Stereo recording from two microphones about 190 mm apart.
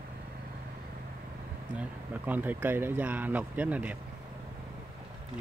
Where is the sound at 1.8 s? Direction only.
10° right (ahead or behind).